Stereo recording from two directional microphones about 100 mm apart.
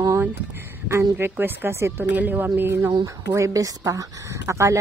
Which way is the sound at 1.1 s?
20° right (ahead or behind).